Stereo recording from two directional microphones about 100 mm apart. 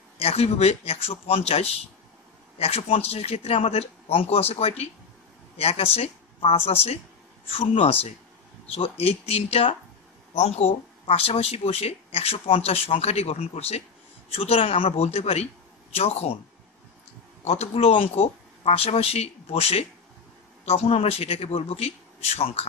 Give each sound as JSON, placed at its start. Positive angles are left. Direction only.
{"t": 0.2, "sound": "speech", "side_deg": 90}
{"t": 7.5, "sound": "speech", "side_deg": 70}
{"t": 10.3, "sound": "speech", "side_deg": 90}
{"t": 17.5, "sound": "speech", "side_deg": 90}